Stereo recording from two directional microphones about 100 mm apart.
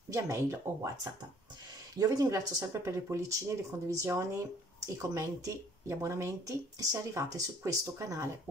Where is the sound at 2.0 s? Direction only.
35° right (ahead or behind).